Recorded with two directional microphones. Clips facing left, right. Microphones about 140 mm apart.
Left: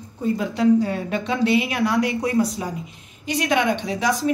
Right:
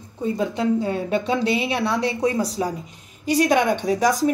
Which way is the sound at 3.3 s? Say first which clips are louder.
Right 3 dB; 45° right (ahead or behind).